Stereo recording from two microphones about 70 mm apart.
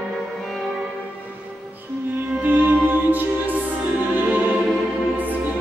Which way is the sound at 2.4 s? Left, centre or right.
Right.